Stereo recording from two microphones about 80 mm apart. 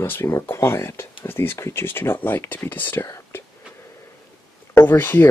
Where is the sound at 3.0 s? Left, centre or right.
Left.